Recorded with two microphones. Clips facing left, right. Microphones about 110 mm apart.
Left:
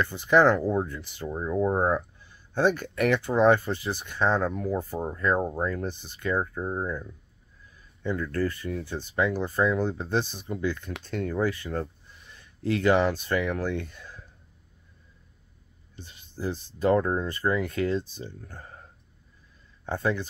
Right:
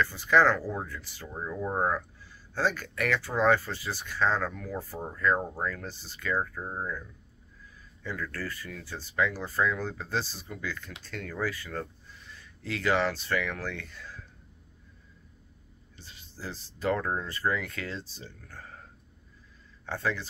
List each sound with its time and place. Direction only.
0.0 s speech: 20° left (ahead or behind)
8.0 s speech: 20° left (ahead or behind)
16.0 s speech: 20° left (ahead or behind)
19.9 s speech: 20° left (ahead or behind)